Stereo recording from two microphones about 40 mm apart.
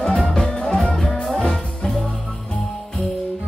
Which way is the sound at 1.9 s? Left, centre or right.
Left.